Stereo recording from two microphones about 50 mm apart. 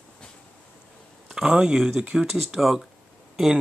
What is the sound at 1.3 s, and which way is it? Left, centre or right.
Speech, centre.